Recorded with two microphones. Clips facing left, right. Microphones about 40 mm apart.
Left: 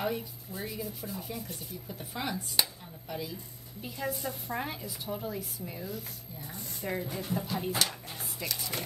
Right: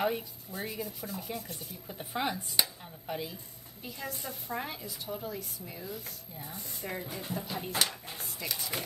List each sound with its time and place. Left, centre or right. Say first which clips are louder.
0.6 s a woman's voice: even; centre
1.9 s speech: right 3 dB; centre
3.8 s a woman's voice: left 5 dB; centre